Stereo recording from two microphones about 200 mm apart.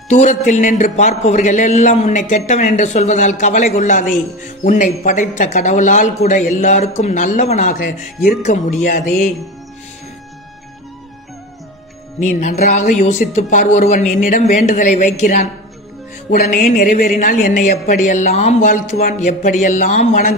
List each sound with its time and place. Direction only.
0.1 s a man's voice: 35° left (ahead or behind)
12.2 s a man's voice: 35° left (ahead or behind)